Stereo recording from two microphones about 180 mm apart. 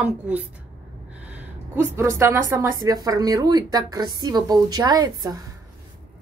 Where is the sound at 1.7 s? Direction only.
15° right (ahead or behind).